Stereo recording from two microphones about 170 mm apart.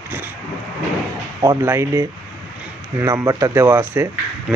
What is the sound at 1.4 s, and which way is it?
Speech, 15° right (ahead or behind).